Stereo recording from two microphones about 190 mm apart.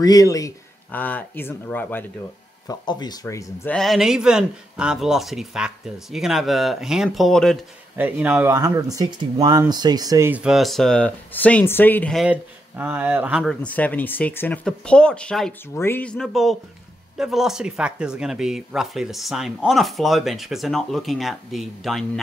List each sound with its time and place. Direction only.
0.0 s speech: 20° left (ahead or behind)
2.7 s speech: 20° left (ahead or behind)
3.7 s speech: centre (ahead or behind)
8.0 s speech: 10° right (ahead or behind)